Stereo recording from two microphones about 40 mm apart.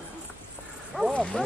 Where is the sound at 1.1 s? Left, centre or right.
Left.